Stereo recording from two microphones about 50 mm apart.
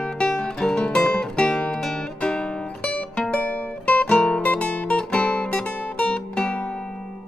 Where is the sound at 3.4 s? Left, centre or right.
Left.